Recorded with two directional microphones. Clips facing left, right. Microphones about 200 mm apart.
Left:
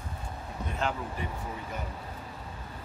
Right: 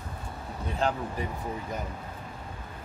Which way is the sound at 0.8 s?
35° right (ahead or behind).